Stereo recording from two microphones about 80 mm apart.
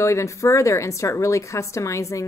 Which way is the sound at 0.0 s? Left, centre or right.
Left.